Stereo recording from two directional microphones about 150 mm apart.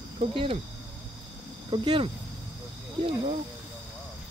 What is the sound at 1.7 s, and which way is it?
Speech, 35° right (ahead or behind).